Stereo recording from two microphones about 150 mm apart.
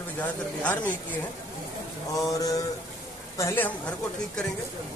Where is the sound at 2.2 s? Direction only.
20° left (ahead or behind).